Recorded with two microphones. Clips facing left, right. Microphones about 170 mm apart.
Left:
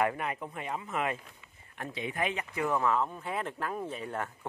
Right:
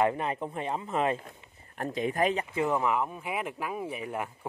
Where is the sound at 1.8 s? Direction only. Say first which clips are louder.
Right 6 dB; 40° right (ahead or behind).